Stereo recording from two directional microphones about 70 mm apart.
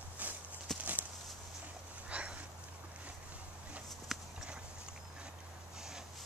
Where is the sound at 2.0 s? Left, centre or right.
Centre.